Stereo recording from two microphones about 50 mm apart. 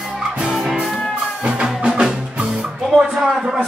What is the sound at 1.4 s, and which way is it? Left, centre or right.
Music, centre.